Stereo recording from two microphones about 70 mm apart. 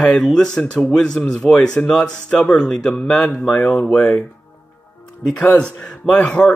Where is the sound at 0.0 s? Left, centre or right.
Centre.